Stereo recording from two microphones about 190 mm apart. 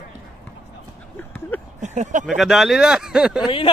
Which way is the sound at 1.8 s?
40° right (ahead or behind).